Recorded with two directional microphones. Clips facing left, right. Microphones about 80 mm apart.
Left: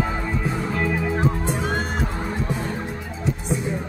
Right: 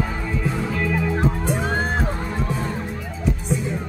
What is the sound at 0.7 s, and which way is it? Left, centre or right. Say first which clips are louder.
Music: even; left.